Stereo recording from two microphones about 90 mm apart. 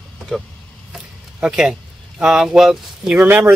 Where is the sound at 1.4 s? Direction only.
5° right (ahead or behind).